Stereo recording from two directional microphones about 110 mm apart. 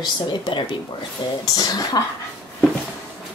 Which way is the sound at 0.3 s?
45° left (ahead or behind).